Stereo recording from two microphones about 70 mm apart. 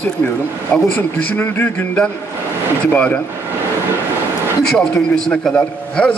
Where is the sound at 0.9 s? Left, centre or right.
Left.